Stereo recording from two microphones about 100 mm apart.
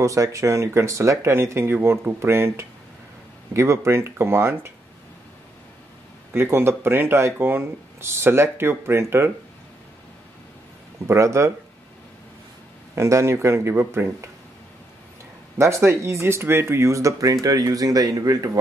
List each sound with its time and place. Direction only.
0.0 s speech: 30° right (ahead or behind)
6.3 s speech: 25° right (ahead or behind)
11.1 s speech: 30° right (ahead or behind)
12.9 s speech: 30° right (ahead or behind)
15.5 s speech: 25° right (ahead or behind)